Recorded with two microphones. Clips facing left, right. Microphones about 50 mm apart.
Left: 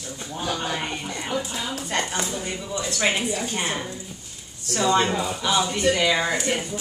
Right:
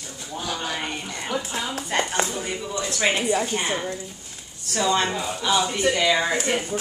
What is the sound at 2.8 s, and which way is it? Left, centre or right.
Speech, centre.